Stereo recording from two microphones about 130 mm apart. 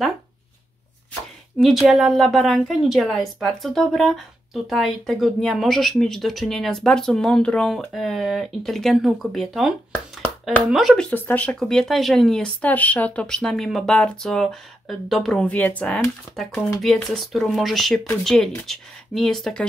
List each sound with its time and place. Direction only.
1.6 s speech: centre (ahead or behind); by 16.4 s 15° left (ahead or behind)
16.8 s speech: centre (ahead or behind)